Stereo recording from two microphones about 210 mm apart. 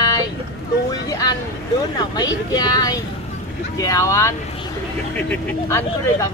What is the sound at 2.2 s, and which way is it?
Speech, 20° left (ahead or behind).